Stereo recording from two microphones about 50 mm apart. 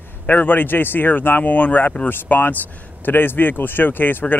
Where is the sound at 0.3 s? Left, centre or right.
Left.